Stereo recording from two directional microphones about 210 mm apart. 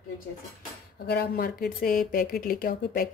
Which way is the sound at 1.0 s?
50° left (ahead or behind).